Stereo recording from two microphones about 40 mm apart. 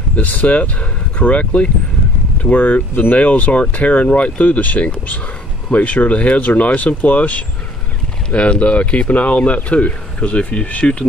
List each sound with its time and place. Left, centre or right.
0.1 s speech: left
8.3 s speech: left